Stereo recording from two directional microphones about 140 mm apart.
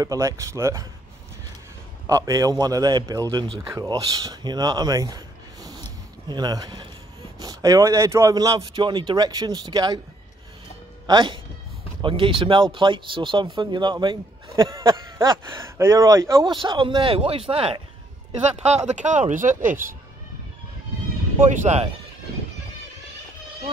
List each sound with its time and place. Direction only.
0.0 s a man's voice: 25° right (ahead or behind)
2.0 s a man's voice: 25° right (ahead or behind)
11.1 s speech: 35° right (ahead or behind)
15.4 s a man's voice: 20° right (ahead or behind)
16.4 s speech: 35° right (ahead or behind); by 20.0 s 70° right (ahead or behind)
21.5 s speech: 60° right (ahead or behind)